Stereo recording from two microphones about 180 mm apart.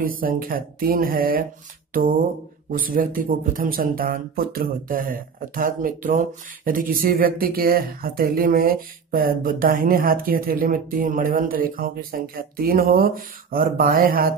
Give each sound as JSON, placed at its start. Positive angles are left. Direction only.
{"t": 0.0, "sound": "speech", "side_deg": -50}
{"t": 2.7, "sound": "speech", "side_deg": -50}